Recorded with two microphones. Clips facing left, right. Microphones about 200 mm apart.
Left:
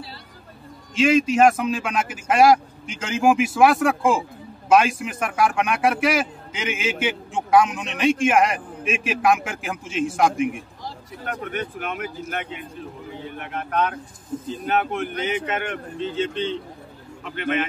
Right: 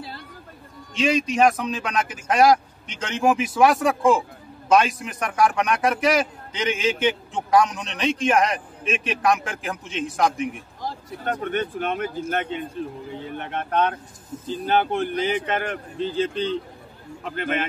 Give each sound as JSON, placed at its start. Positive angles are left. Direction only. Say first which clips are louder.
{"t": 0.9, "sound": "a man's voice", "louder": "left 3 dB", "side_deg": 5}
{"t": 11.2, "sound": "speech", "louder": "right 4 dB", "side_deg": -30}